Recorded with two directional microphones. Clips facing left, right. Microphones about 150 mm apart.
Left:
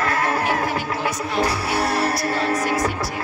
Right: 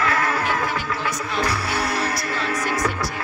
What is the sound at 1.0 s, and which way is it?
Speech, 25° left (ahead or behind).